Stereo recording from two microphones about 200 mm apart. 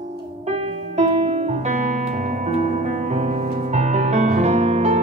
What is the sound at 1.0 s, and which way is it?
Music, 35° right (ahead or behind).